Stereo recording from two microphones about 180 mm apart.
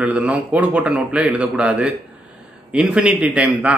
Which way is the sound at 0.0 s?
5° right (ahead or behind).